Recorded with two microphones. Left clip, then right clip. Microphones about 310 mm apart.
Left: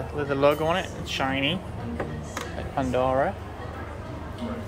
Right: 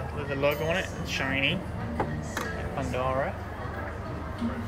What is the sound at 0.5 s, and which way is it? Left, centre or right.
Speech, centre.